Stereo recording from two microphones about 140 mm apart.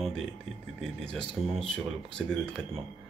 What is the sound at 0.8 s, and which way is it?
Speech, 5° left (ahead or behind).